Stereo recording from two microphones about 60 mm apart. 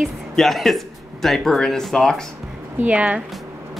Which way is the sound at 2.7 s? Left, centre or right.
Right.